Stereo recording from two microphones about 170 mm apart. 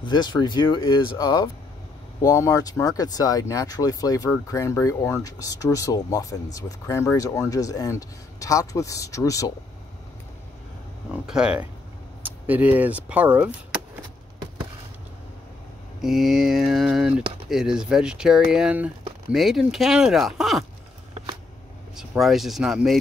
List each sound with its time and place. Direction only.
0.0 s speech: 25° left (ahead or behind)
11.1 s speech: 5° right (ahead or behind)
16.0 s speech: centre (ahead or behind)
21.9 s speech: centre (ahead or behind)